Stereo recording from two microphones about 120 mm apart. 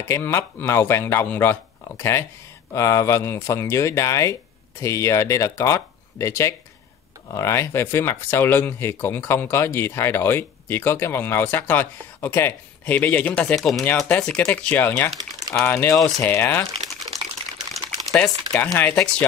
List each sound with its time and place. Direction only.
0.1 s speech: 20° left (ahead or behind); by 13.8 s centre (ahead or behind)
13.8 s speech: 15° left (ahead or behind)
18.1 s speech: 5° left (ahead or behind)